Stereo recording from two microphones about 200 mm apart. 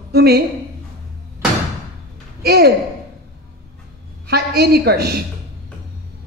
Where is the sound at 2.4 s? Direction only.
50° right (ahead or behind).